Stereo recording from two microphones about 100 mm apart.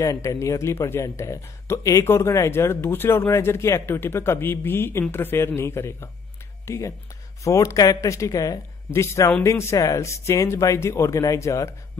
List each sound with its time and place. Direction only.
0.0 s speech: 30° left (ahead or behind)